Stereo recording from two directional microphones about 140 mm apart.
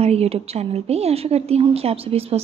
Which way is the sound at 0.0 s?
45° right (ahead or behind).